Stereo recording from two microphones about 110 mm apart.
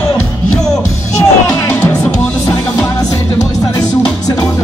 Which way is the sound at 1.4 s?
25° left (ahead or behind).